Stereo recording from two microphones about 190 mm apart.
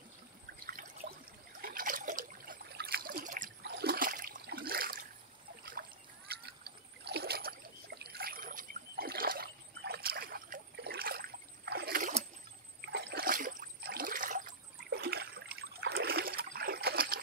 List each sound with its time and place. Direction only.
0.7 s trickle: 50° right (ahead or behind)
3.6 s splash: 55° right (ahead or behind)
12.8 s water: 60° right (ahead or behind); by 14.5 s 45° right (ahead or behind)
14.9 s water: 55° right (ahead or behind)